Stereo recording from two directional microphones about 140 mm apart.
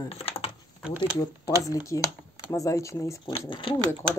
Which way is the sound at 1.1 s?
25° left (ahead or behind).